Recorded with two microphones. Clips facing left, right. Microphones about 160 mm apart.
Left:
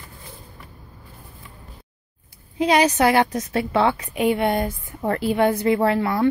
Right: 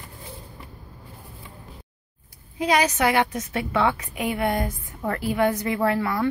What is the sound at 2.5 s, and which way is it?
A woman's voice, 25° left (ahead or behind).